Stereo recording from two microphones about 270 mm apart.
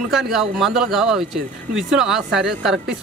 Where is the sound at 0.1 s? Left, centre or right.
Centre.